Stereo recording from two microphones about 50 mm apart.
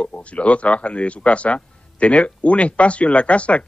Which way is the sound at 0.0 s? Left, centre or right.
Left.